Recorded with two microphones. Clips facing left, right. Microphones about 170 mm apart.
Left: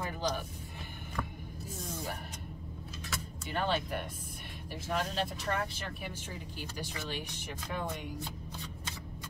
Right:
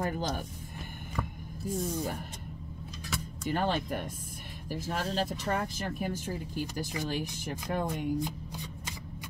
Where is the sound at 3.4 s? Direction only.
45° right (ahead or behind).